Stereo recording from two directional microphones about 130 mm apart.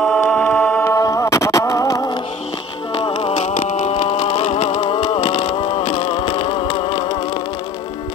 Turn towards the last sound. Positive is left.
turn(degrees=40)  # may be behind; listen again after turning